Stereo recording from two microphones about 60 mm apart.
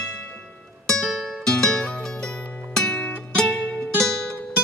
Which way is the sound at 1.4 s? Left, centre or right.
Centre.